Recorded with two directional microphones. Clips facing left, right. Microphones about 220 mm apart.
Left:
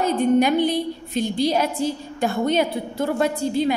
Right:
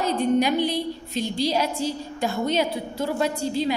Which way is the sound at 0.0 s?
55° left (ahead or behind).